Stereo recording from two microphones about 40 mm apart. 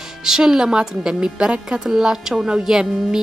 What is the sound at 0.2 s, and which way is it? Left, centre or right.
A woman's voice, centre.